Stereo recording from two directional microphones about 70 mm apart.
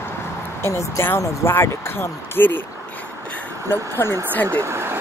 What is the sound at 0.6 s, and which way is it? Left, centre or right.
Speech, left.